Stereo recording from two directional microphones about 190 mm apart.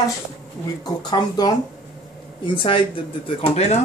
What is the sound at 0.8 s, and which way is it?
Speech, 20° left (ahead or behind).